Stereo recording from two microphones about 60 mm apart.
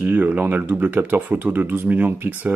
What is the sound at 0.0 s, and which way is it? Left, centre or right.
Speech, right.